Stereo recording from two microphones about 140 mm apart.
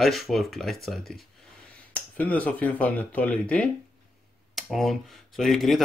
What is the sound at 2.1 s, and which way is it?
Speech, 10° left (ahead or behind).